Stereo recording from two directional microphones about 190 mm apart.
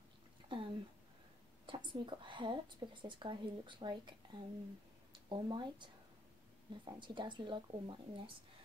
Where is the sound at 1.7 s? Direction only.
25° right (ahead or behind).